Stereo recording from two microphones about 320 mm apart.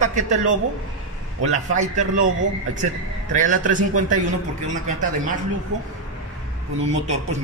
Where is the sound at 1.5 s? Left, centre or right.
Right.